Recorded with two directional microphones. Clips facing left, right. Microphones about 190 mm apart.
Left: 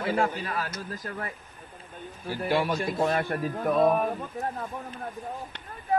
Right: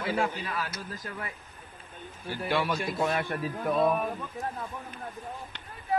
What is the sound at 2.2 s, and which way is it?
A man's voice, 40° left (ahead or behind).